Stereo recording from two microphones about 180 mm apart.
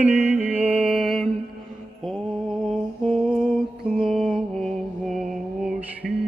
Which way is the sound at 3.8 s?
5° right (ahead or behind).